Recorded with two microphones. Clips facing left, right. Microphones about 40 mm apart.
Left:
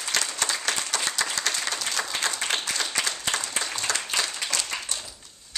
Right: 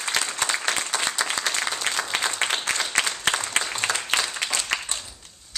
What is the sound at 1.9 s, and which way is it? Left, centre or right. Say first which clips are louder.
Applause: right 3 dB; right.